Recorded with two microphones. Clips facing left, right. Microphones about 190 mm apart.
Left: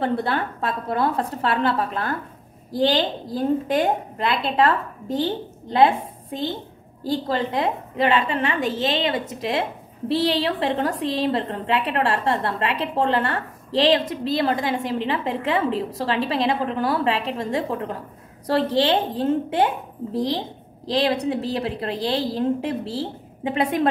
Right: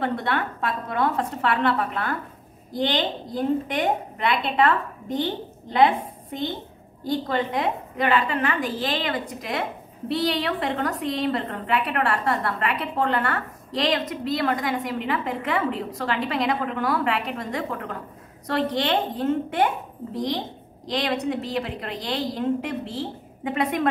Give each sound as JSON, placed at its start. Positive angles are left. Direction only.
{"t": 0.0, "sound": "a woman's voice", "side_deg": 30}